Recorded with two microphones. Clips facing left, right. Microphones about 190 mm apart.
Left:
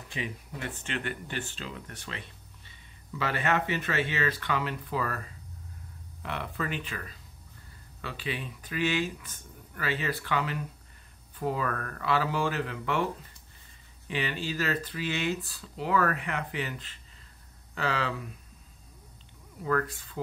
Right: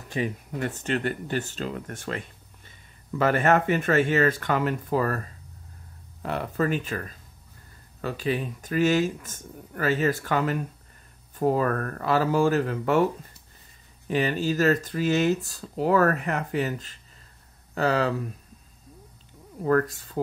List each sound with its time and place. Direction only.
0.1 s speech: 45° right (ahead or behind)
19.6 s speech: 40° right (ahead or behind)